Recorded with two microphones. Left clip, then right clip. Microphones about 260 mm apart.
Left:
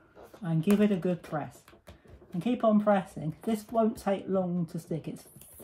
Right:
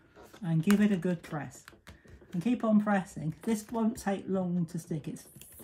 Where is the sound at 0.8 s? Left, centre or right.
Centre.